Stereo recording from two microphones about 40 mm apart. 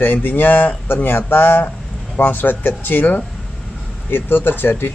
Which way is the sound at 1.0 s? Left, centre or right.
Left.